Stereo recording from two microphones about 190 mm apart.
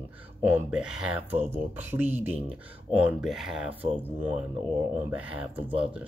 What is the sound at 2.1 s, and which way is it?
Speech, 35° right (ahead or behind).